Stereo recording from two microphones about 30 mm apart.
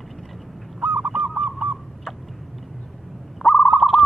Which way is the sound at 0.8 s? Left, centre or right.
Right.